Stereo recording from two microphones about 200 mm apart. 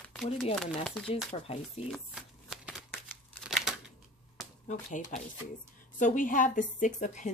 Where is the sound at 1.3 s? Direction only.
30° left (ahead or behind).